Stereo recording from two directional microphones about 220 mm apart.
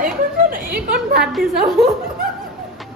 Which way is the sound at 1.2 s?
Centre (ahead or behind).